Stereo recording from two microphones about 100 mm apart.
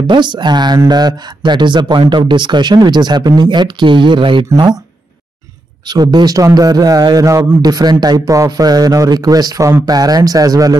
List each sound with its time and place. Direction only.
0.0 s speech: 50° right (ahead or behind)
5.9 s a man's voice: 45° right (ahead or behind)